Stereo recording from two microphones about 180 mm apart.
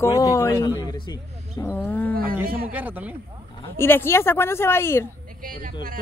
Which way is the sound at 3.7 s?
15° left (ahead or behind).